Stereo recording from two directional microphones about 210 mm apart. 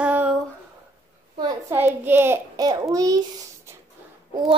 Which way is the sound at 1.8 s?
10° right (ahead or behind).